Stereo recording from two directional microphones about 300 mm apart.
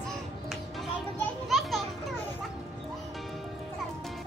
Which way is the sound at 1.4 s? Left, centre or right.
Centre.